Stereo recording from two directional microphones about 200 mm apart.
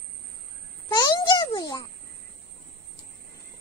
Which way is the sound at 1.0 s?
20° left (ahead or behind).